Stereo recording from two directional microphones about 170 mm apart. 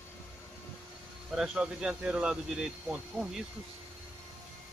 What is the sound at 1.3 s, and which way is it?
Speech, 5° right (ahead or behind).